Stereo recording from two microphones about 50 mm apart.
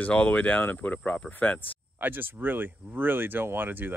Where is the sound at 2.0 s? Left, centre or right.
Right.